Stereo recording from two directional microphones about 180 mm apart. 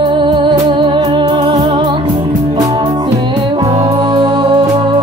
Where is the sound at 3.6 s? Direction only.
35° right (ahead or behind).